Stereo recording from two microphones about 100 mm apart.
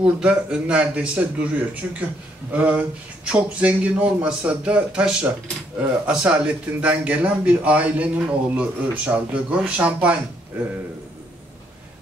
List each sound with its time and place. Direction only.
0.0 s a man's voice: 10° right (ahead or behind)